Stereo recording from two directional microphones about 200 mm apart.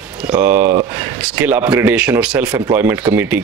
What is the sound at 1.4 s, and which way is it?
Speech, 5° right (ahead or behind).